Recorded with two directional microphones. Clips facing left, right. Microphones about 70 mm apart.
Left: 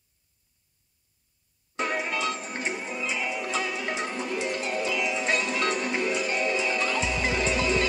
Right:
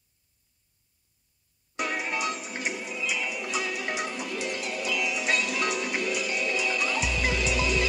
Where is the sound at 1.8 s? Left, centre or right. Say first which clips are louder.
Left 2 dB; left.